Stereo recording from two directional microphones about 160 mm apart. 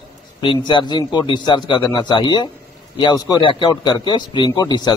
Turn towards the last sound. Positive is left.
turn(degrees=25)  # may be behind; listen again after turning